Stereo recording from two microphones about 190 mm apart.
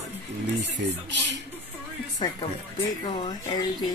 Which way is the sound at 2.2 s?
20° left (ahead or behind).